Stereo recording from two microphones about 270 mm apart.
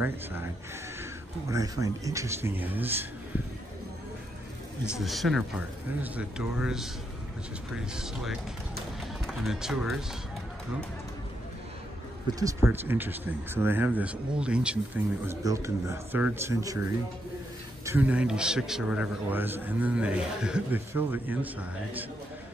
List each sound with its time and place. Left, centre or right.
0.0 s speech: centre
1.5 s speech: centre
4.9 s a man's voice: centre
12.3 s speech: centre
17.8 s a man's voice: centre